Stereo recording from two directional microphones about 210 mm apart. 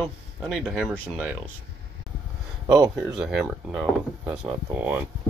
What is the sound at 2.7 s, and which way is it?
Speech, 15° right (ahead or behind).